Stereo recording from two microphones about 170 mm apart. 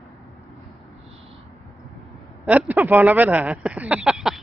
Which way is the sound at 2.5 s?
10° right (ahead or behind).